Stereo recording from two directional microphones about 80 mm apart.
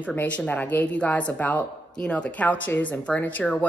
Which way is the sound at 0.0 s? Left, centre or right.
Left.